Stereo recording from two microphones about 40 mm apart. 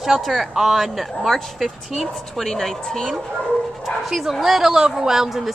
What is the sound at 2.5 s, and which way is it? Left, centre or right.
Speech, centre.